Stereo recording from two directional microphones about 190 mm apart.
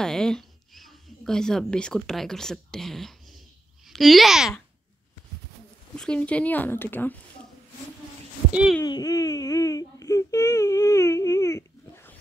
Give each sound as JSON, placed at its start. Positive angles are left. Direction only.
{"t": 0.0, "sound": "a child's voice", "side_deg": 5}
{"t": 5.9, "sound": "speech", "side_deg": 5}
{"t": 8.5, "sound": "a child's voice", "side_deg": -5}
{"t": 8.8, "sound": "speech", "side_deg": 20}